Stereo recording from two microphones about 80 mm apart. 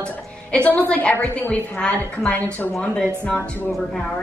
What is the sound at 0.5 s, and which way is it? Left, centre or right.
A woman's voice, centre.